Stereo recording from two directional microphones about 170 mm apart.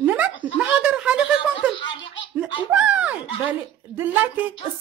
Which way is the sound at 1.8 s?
25° left (ahead or behind).